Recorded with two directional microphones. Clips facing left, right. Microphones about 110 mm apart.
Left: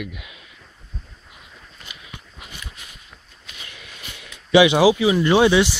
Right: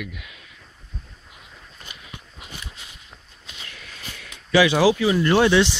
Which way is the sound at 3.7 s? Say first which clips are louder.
Right 1 dB; 15° left (ahead or behind).